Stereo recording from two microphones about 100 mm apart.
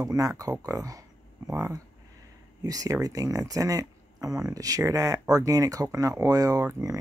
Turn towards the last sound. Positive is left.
turn(degrees=-35)  # may be behind; listen again after turning